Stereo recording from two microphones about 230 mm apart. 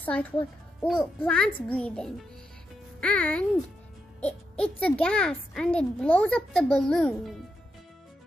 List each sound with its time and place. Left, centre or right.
0.0 s a child's voice: centre